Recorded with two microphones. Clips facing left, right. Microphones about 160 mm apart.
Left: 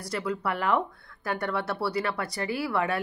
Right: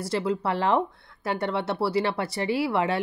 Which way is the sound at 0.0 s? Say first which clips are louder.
Right 4 dB; 25° right (ahead or behind).